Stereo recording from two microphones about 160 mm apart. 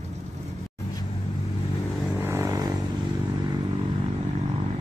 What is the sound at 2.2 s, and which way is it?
Vehicle, 20° right (ahead or behind).